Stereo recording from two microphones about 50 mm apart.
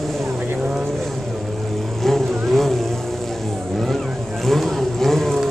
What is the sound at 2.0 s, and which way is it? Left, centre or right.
Vehicle, centre.